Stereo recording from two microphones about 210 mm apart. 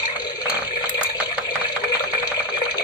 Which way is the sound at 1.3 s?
20° left (ahead or behind).